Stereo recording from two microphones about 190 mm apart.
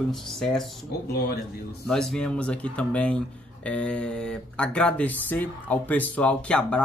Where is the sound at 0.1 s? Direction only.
Centre (ahead or behind).